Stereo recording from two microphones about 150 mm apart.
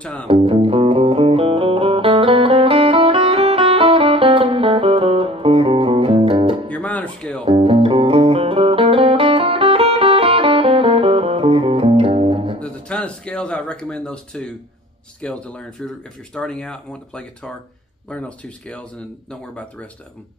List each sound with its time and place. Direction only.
0.0 s speech: 5° left (ahead or behind)
0.3 s music: 35° right (ahead or behind)
6.7 s music: 10° left (ahead or behind)
7.4 s music: 40° right (ahead or behind)
12.5 s a sound: 5° left (ahead or behind)
15.2 s speech: 5° left (ahead or behind)